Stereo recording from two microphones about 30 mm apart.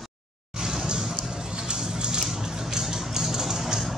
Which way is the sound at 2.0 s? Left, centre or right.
Right.